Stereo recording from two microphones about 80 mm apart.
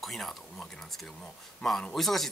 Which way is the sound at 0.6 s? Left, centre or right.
Centre.